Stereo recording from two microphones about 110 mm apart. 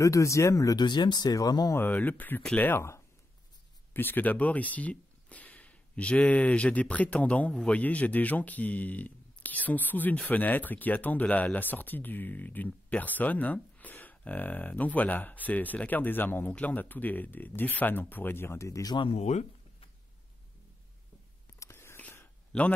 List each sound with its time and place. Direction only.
0.0 s speech: 30° left (ahead or behind)
0.8 s speech: 45° left (ahead or behind)
1.8 s speech: 15° left (ahead or behind)
19.1 s speech: 90° left
21.5 s whispering: 25° left (ahead or behind)
22.5 s speech: 5° left (ahead or behind)